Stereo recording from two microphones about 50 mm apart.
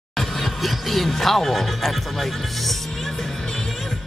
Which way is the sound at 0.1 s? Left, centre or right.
Centre.